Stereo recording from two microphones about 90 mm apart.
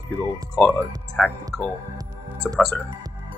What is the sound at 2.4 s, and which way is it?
Speech, 15° left (ahead or behind).